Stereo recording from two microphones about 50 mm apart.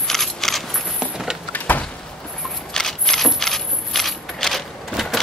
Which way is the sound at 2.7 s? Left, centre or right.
Centre.